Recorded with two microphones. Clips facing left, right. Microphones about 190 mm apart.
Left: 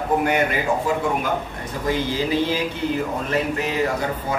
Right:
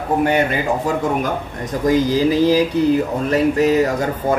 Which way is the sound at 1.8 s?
40° right (ahead or behind).